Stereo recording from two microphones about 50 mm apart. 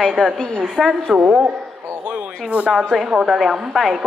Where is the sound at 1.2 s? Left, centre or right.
Right.